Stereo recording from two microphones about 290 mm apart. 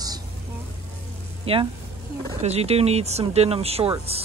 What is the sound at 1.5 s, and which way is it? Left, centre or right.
Speech, centre.